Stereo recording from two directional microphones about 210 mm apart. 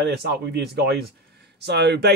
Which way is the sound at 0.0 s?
50° right (ahead or behind).